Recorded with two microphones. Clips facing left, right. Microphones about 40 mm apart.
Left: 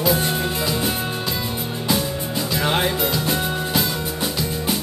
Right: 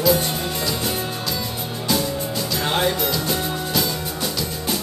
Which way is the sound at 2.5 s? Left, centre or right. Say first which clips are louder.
Left 1 dB; left.